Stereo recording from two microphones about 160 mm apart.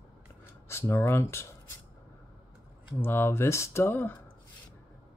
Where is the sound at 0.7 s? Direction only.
15° left (ahead or behind).